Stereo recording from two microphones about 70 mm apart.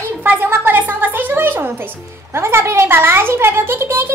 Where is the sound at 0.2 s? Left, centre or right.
Right.